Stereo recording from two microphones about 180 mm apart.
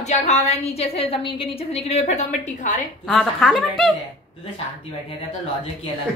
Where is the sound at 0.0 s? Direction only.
40° left (ahead or behind).